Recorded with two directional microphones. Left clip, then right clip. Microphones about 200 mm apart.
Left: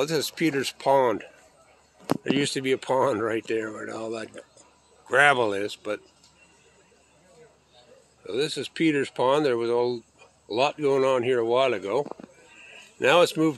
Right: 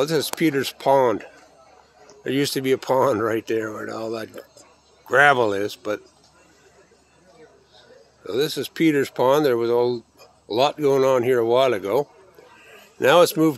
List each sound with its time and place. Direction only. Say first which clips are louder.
0.0 s speech: right 4 dB; 10° right (ahead or behind)
8.3 s speech: right 4 dB; 10° right (ahead or behind)
12.5 s a sound: right 5 dB; 15° right (ahead or behind)